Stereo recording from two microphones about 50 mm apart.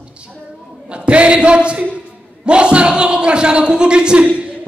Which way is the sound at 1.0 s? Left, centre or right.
Right.